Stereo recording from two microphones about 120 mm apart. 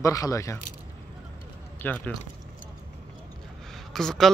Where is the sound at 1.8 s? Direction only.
15° left (ahead or behind).